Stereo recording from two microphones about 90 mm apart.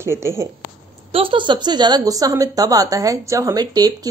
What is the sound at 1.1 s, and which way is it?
A woman's voice, 70° right (ahead or behind).